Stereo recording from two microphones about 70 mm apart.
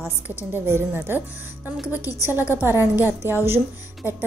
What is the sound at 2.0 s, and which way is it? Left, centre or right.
Speech, left.